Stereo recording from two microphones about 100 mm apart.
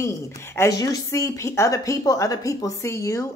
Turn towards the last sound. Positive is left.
turn(degrees=30)  # may be behind; listen again after turning